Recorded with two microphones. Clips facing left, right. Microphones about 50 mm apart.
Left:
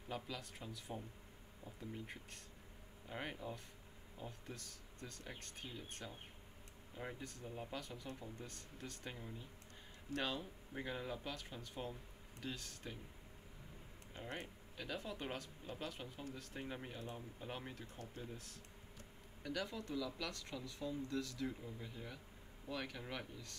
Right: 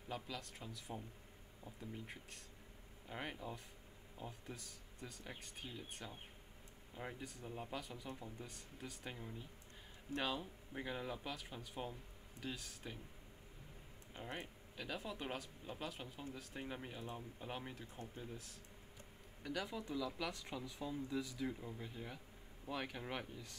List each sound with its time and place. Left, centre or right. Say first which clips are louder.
0.1 s speech: even; centre
14.1 s speech: even; centre